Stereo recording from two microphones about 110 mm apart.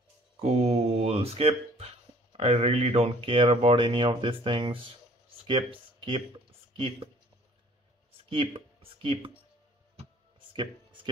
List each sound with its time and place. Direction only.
0.4 s speech: 70° right (ahead or behind)
8.3 s speech: 55° right (ahead or behind)
10.5 s a sound: 50° right (ahead or behind)